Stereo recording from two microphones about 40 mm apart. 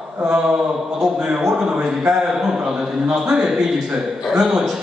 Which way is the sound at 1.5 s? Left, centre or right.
Centre.